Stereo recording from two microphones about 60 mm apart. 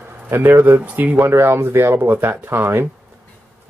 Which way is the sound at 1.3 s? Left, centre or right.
Right.